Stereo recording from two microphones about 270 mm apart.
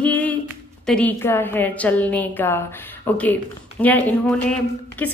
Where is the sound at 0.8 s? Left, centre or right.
Centre.